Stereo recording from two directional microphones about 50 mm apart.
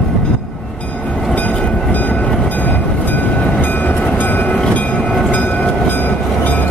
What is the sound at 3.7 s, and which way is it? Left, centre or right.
Train, left.